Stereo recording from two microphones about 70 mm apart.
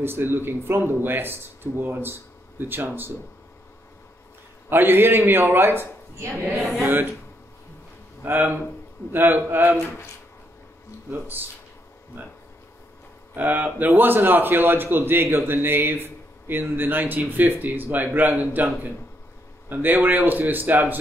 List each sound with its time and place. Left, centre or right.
0.0 s a man's voice: right
4.6 s speech: right
6.6 s speech: centre
8.2 s a man's voice: right
12.1 s a man's voice: right
13.4 s a man's voice: right
19.7 s a man's voice: right